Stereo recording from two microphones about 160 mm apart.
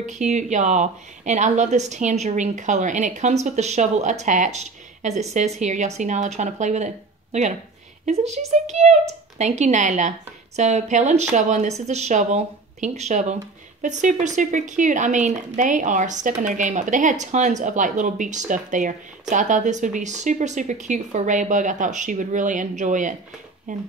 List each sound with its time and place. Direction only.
0.0 s speech: 45° right (ahead or behind)